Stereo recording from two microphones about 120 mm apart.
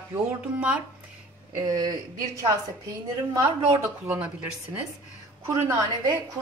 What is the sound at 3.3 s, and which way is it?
Speech, 25° right (ahead or behind).